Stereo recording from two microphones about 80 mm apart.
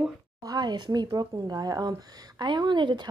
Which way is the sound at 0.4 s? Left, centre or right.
Right.